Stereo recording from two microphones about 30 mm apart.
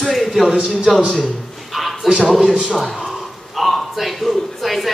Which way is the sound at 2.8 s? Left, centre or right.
Centre.